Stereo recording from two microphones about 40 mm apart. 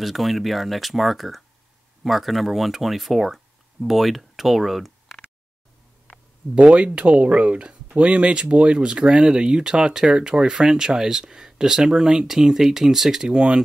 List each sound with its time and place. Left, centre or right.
0.0 s speech: centre
6.5 s speech: right; by 13.4 s centre